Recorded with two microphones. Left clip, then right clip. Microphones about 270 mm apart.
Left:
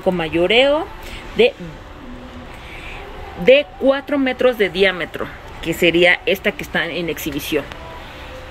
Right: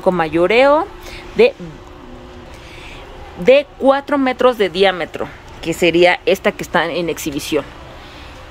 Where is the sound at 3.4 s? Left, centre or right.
Centre.